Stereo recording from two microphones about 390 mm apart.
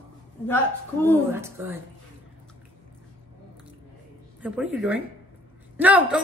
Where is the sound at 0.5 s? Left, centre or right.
Centre.